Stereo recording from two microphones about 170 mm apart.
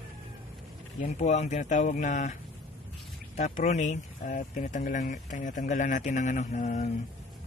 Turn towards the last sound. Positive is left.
turn(degrees=45)  # may be behind; listen again after turning